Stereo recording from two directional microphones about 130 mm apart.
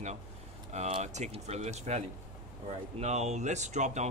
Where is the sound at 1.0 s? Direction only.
60° right (ahead or behind).